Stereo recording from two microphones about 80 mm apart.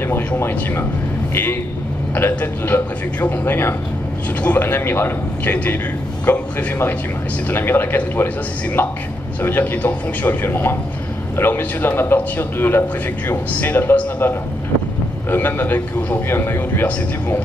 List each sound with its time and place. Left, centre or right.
0.4 s a man's voice: left